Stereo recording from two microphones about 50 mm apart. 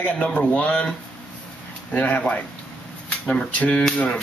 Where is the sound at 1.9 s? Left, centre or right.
Left.